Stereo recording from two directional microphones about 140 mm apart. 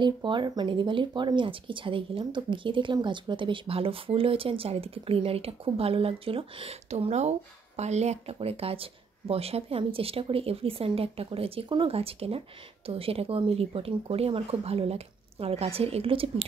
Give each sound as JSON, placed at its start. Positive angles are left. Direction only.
{"t": 0.0, "sound": "speech", "side_deg": -35}